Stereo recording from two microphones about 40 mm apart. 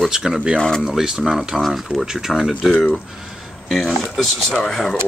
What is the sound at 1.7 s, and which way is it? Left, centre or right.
Speech, centre.